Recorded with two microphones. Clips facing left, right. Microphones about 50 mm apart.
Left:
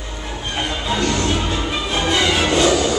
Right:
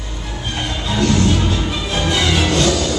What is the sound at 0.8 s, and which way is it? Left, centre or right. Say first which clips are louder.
Music: right 4 dB; centre.